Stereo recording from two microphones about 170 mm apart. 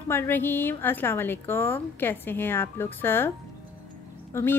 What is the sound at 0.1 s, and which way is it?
Speech, 15° left (ahead or behind).